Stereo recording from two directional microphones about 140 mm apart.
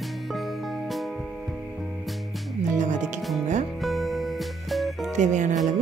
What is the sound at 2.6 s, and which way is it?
Music, 60° right (ahead or behind).